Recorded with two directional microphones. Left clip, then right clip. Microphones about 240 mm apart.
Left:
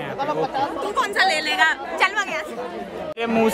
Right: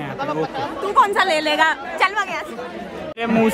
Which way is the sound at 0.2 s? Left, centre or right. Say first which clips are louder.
Left 1 dB; left.